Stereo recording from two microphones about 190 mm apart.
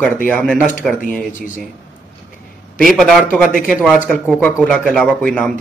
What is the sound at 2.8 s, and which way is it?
Speech, centre (ahead or behind).